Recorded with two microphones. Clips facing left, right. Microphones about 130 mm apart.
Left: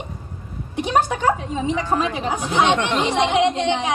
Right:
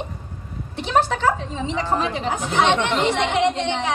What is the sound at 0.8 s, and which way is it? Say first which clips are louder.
A woman's voice: even; 15° left (ahead or behind).